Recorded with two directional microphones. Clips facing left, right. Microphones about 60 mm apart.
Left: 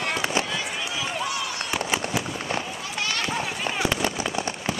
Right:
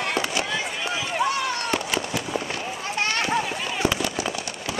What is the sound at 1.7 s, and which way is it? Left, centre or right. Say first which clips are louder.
Fireworks: even; centre.